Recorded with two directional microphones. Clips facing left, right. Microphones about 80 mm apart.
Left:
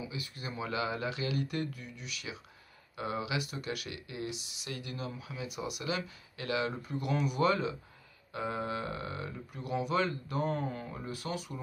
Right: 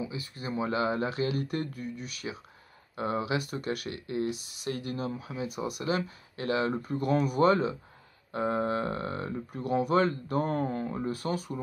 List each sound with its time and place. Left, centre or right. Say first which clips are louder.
0.0 s speech: right 5 dB; right